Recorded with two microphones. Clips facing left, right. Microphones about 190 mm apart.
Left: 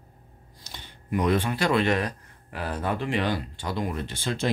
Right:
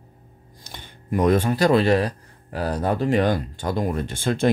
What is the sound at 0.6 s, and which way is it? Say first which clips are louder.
Speech: right 3 dB; 50° right (ahead or behind).